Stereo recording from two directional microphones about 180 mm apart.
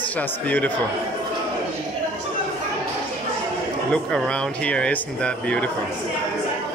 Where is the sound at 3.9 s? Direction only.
5° left (ahead or behind).